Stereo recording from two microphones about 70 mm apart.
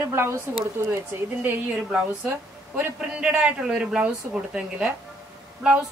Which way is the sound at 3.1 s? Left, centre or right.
Centre.